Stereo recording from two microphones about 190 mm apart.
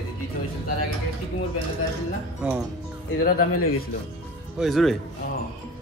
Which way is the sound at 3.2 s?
50° left (ahead or behind).